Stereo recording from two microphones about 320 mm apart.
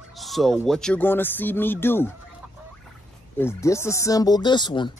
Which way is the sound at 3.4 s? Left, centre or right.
Centre.